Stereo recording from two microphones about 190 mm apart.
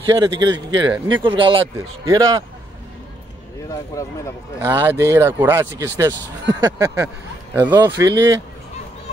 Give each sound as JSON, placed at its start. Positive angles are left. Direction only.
{"t": 0.0, "sound": "speech", "side_deg": -25}
{"t": 3.6, "sound": "speech", "side_deg": 15}
{"t": 4.6, "sound": "speech", "side_deg": -15}